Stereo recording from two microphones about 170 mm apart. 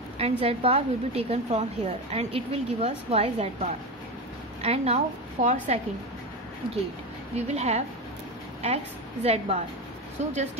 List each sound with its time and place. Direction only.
0.2 s a woman's voice: 35° right (ahead or behind)
4.6 s a woman's voice: 40° right (ahead or behind)
7.3 s a woman's voice: 40° right (ahead or behind)